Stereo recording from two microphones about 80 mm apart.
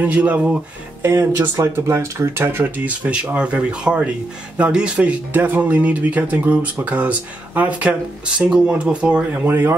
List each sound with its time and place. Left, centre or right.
0.0 s speech: centre
1.0 s speech: right
9.5 s speech: right